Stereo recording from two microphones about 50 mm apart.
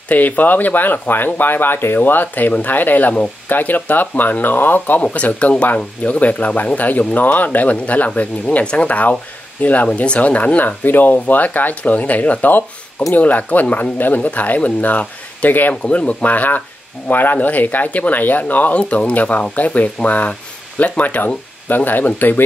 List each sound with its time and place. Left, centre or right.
0.1 s speech: left
5.0 s speech: left
21.6 s speech: left